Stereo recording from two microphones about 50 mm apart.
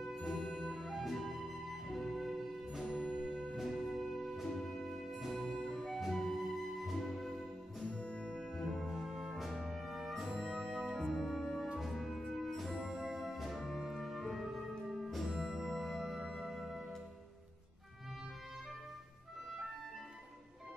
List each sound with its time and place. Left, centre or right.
0.1 s music: centre
2.8 s music: centre
7.9 s music: centre
8.3 s brass instrument: centre
11.8 s music: centre